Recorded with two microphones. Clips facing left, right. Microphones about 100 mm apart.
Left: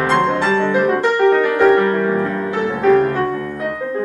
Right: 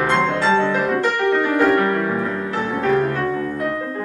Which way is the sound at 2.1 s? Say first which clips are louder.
Left 4 dB; centre (ahead or behind).